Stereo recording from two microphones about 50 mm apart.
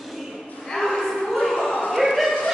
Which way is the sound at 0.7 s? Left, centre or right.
Centre.